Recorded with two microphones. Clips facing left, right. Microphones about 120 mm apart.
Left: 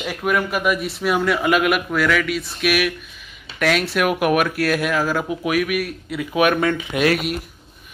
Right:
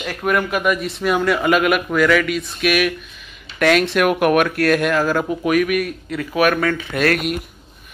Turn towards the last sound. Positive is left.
turn(degrees=10)  # may be behind; listen again after turning